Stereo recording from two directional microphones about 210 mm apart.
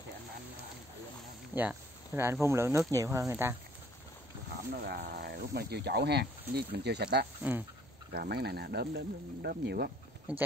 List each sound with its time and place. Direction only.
1.5 s speech: 10° right (ahead or behind)
4.8 s speech: 50° right (ahead or behind)
7.5 s speech: 5° right (ahead or behind)
8.1 s speech: 50° right (ahead or behind)
10.3 s speech: 10° right (ahead or behind)